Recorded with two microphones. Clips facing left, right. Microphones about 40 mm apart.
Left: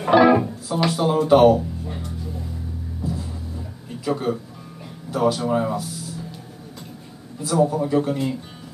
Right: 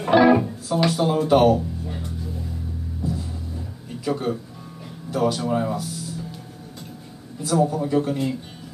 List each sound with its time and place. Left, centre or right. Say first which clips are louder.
0.1 s music: left 1 dB; centre
4.0 s speech: left 1 dB; centre
7.4 s a man's voice: left 1 dB; centre